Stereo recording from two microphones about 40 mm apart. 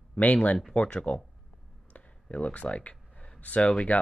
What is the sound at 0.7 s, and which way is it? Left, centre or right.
Speech, left.